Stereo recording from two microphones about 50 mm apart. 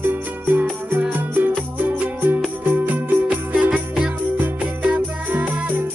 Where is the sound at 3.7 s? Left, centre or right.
Centre.